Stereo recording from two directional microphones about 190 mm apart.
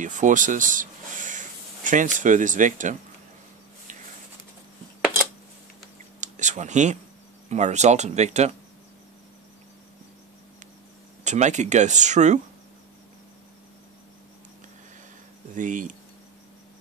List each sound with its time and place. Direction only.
0.0 s speech: 40° right (ahead or behind)
6.2 s a sound: 40° right (ahead or behind)
7.4 s speech: 35° right (ahead or behind)
11.2 s speech: 40° right (ahead or behind)
15.5 s speech: 45° right (ahead or behind)